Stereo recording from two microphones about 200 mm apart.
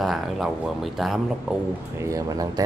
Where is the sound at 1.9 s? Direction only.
15° right (ahead or behind).